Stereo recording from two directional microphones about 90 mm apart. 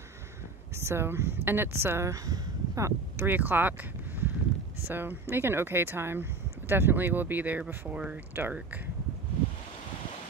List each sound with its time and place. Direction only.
0.7 s speech: 30° right (ahead or behind)
2.2 s a sound: 40° right (ahead or behind)
3.2 s speech: 20° right (ahead or behind)
4.8 s speech: 20° right (ahead or behind)